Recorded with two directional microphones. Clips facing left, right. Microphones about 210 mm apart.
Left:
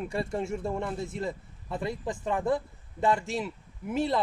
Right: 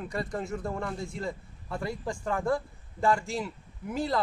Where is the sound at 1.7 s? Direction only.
20° left (ahead or behind).